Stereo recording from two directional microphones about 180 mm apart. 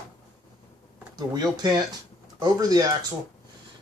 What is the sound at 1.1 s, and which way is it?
Speech, 20° right (ahead or behind).